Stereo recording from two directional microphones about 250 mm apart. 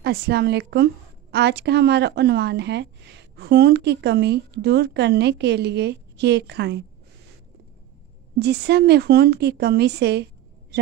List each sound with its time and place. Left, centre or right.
0.0 s a woman's voice: right
8.4 s a woman's voice: right